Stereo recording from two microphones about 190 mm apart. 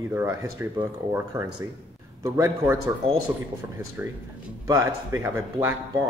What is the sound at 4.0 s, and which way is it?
Speech, 10° right (ahead or behind).